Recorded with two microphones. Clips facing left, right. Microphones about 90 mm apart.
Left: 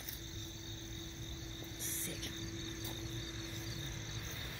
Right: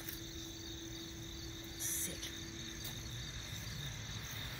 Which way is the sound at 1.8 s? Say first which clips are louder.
Left 4 dB; 25° right (ahead or behind).